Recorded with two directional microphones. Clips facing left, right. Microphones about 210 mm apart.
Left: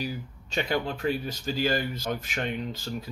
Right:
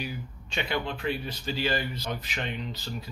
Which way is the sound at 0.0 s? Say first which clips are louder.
Left 3 dB; 40° left (ahead or behind).